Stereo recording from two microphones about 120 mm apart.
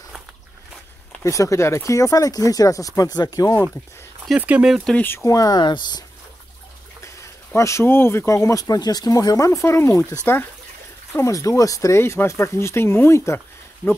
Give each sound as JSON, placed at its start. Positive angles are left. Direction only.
{"t": 1.2, "sound": "speech", "side_deg": 25}
{"t": 4.4, "sound": "speech", "side_deg": -10}
{"t": 4.8, "sound": "speech", "side_deg": 15}
{"t": 7.5, "sound": "speech", "side_deg": 25}
{"t": 8.5, "sound": "speech", "side_deg": 30}